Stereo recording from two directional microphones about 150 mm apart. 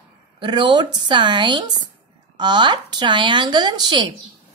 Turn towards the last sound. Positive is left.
turn(degrees=-30)  # may be behind; listen again after turning